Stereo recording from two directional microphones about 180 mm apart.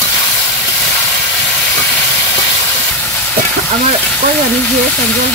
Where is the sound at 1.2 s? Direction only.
10° left (ahead or behind).